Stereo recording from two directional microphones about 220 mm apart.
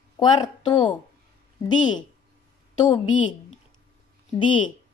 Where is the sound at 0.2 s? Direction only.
20° left (ahead or behind).